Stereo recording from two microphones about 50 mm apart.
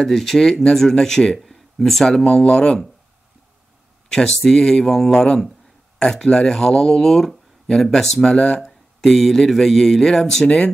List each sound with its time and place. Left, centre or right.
0.0 s speech: centre
1.4 s speech: centre
4.1 s speech: centre